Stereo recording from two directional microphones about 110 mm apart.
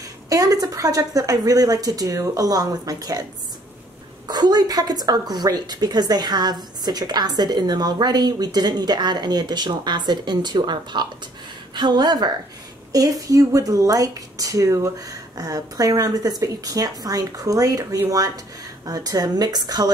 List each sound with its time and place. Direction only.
0.3 s a woman's voice: 35° right (ahead or behind)
4.3 s a woman's voice: 40° right (ahead or behind)